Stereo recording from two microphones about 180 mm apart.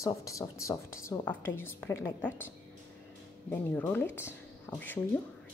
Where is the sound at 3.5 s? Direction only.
10° left (ahead or behind).